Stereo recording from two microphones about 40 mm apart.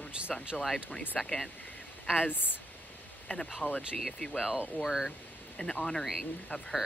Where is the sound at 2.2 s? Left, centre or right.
Left.